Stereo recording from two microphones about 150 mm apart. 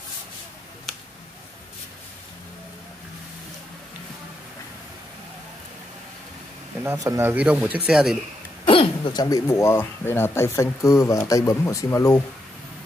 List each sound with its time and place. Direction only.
6.8 s speech: 15° right (ahead or behind)
8.6 s speech: 35° left (ahead or behind)